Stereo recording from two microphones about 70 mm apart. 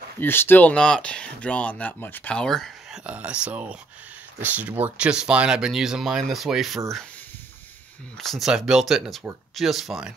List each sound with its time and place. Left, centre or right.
0.2 s speech: left
0.7 s speech: centre; by 2.3 s left
2.3 s speech: centre
2.9 s speech: centre
4.9 s speech: centre
8.2 s speech: centre
8.5 s speech: centre